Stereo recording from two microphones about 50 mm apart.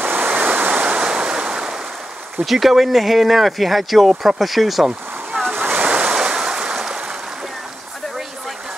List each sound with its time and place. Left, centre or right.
0.0 s waves: right; by 1.8 s centre
2.4 s speech: centre
5.5 s waves: right
5.8 s waves: right